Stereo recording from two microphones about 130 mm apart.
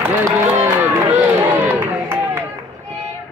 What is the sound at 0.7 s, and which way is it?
Run, 15° right (ahead or behind).